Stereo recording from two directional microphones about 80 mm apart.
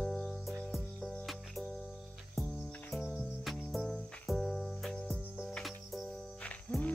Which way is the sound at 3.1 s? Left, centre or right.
Centre.